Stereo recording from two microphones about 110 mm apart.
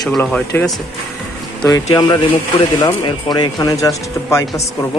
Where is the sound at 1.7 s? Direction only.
35° left (ahead or behind).